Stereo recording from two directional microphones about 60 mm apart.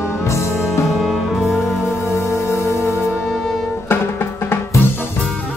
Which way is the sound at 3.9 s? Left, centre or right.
Left.